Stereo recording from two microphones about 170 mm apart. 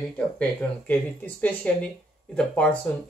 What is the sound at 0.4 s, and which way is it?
Speech, 10° left (ahead or behind).